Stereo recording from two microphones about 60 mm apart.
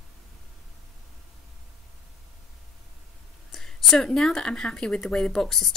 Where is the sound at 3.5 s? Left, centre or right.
Centre.